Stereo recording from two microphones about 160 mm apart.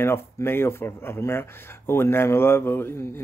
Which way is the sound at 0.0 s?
15° left (ahead or behind).